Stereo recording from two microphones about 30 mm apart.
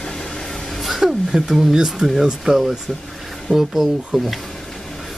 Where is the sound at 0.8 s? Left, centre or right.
Centre.